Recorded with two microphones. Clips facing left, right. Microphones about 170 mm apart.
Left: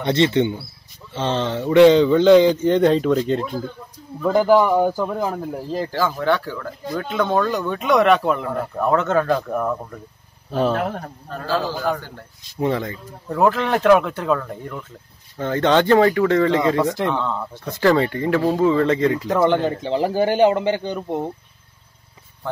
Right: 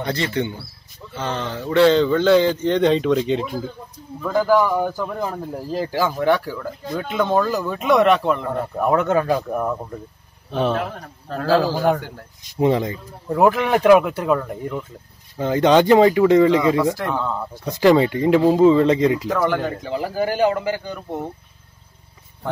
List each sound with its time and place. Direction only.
0.0 s a man's voice: 25° left (ahead or behind); by 3.5 s 5° right (ahead or behind)
4.2 s speech: 20° left (ahead or behind)
5.7 s speech: 10° right (ahead or behind)
8.7 s speech: 15° right (ahead or behind)
12.5 s speech: 15° right (ahead or behind)
16.7 s a man's voice: 20° left (ahead or behind)
17.1 s speech: 5° right (ahead or behind)
19.2 s a man's voice: 20° left (ahead or behind)